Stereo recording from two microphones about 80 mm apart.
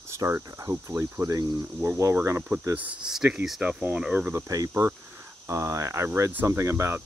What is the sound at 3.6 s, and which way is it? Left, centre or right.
Speech, centre.